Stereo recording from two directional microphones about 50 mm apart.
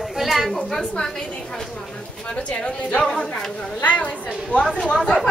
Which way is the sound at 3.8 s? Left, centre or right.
Left.